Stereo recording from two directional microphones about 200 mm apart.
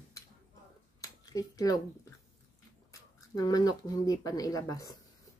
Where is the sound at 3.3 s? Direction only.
20° left (ahead or behind).